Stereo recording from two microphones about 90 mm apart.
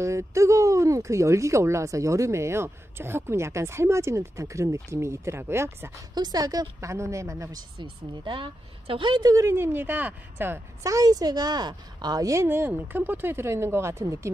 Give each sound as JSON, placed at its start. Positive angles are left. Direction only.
{"t": 0.0, "sound": "speech", "side_deg": -35}
{"t": 6.1, "sound": "speech", "side_deg": -45}
{"t": 7.8, "sound": "speech", "side_deg": -65}
{"t": 9.2, "sound": "speech", "side_deg": -40}
{"t": 10.8, "sound": "a woman's voice", "side_deg": -40}
{"t": 12.4, "sound": "speech", "side_deg": -25}